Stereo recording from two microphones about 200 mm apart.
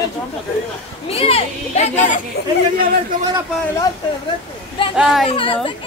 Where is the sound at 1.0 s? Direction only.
30° left (ahead or behind).